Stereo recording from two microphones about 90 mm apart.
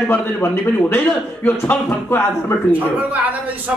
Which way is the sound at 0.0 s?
25° left (ahead or behind).